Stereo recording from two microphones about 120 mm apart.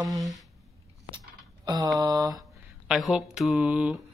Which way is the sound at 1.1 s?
35° right (ahead or behind).